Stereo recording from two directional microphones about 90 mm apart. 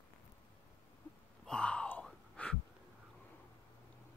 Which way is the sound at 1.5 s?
10° left (ahead or behind).